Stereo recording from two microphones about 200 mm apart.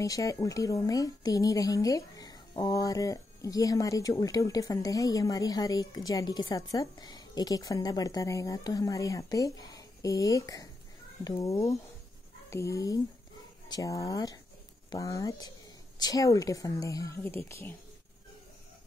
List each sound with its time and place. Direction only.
0.0 s a woman's voice: 15° left (ahead or behind)